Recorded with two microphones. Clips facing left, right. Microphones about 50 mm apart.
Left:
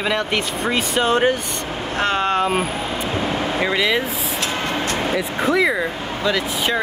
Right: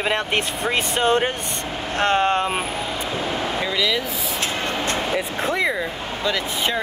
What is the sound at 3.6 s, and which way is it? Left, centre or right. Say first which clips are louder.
Speech: left 5 dB; left.